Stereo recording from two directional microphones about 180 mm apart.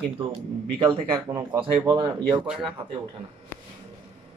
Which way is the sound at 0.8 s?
15° right (ahead or behind).